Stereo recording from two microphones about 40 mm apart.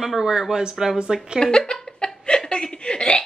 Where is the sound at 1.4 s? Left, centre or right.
Centre.